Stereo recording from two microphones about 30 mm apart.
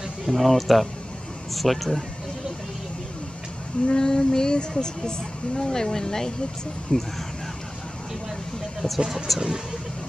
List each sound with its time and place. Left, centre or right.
0.3 s speech: centre
3.8 s speech: left
8.8 s speech: left
9.3 s speech: centre